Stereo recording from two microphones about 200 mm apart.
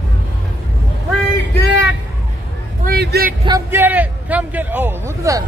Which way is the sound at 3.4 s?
15° right (ahead or behind).